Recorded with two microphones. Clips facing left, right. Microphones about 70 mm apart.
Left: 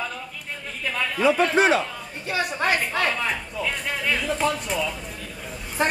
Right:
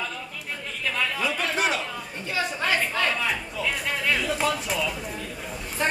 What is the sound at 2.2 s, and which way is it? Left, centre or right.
A woman's voice, centre.